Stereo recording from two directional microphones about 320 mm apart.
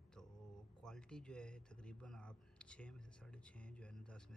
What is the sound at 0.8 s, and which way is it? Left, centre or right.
Speech, centre.